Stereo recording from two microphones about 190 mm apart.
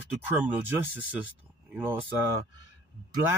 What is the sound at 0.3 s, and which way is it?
Speech, 10° right (ahead or behind).